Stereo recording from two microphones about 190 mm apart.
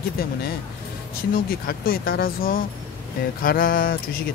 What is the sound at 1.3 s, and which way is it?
Speech, 50° left (ahead or behind).